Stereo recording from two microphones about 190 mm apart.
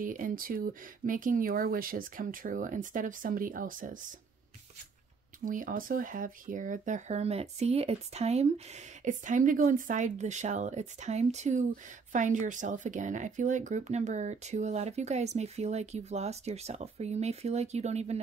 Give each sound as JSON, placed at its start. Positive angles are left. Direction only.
{"t": 0.0, "sound": "speech", "side_deg": -45}
{"t": 5.4, "sound": "speech", "side_deg": -45}